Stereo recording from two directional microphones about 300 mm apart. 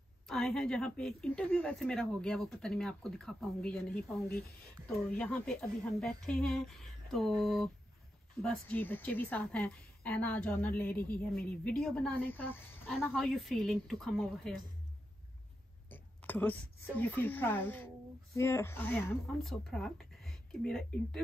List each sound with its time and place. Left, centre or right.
0.3 s a woman's voice: centre
4.8 s a woman's voice: centre
11.0 s a man's voice: left
11.4 s a woman's voice: centre
15.9 s a woman's voice: centre